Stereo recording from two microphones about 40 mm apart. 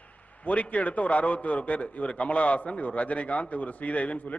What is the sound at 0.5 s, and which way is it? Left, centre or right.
A man's voice, left.